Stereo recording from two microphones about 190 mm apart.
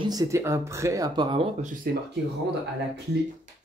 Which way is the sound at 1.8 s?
55° right (ahead or behind).